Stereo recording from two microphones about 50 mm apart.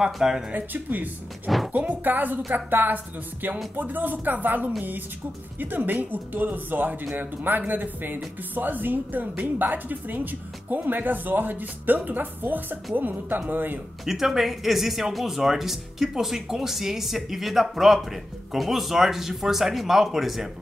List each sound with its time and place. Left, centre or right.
0.0 s speech: centre
0.5 s speech: right
14.0 s speech: centre